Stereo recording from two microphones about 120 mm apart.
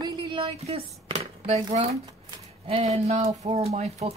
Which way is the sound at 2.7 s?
60° right (ahead or behind).